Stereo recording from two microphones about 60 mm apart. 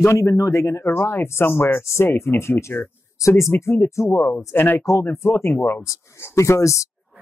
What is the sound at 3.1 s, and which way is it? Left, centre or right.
Speech, left.